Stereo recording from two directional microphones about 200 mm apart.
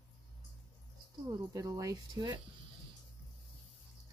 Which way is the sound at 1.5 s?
15° right (ahead or behind).